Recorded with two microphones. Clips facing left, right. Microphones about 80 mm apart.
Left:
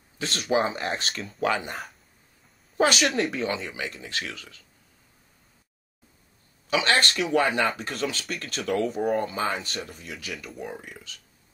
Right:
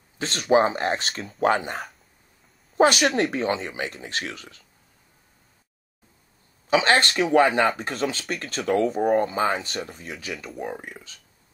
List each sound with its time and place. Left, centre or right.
0.2 s speech: right
2.9 s speech: right
6.7 s speech: right
9.4 s speech: right